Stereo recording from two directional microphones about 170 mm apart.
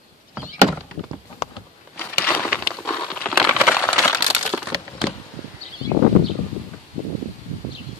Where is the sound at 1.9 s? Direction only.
10° left (ahead or behind).